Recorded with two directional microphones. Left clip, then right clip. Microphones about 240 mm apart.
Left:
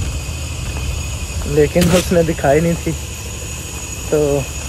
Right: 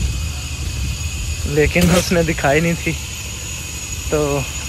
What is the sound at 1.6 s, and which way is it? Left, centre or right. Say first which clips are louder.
Speech: left 2 dB; centre.